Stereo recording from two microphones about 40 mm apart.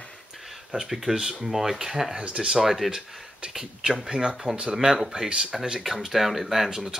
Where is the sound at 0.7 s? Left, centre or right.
Centre.